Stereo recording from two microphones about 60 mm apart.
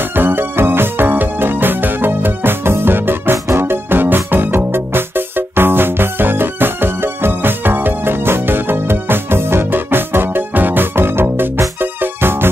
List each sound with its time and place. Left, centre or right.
0.1 s music: right